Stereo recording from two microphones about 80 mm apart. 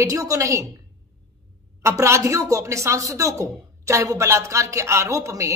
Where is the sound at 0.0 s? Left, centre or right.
Right.